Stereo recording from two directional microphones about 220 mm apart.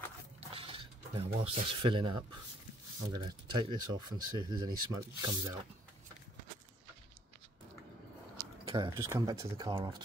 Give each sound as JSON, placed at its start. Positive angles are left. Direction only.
{"t": 0.4, "sound": "a sound", "side_deg": -25}
{"t": 3.1, "sound": "speech", "side_deg": -20}
{"t": 8.4, "sound": "speech", "side_deg": -20}